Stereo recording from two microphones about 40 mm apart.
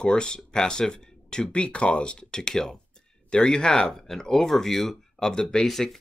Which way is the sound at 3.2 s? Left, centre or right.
Left.